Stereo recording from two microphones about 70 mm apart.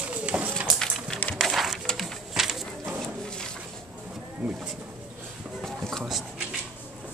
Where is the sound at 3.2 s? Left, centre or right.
Centre.